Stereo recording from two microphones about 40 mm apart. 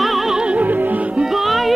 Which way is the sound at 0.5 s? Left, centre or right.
Right.